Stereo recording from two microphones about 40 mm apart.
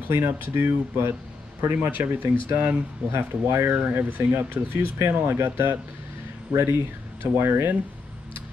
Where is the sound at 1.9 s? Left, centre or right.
Right.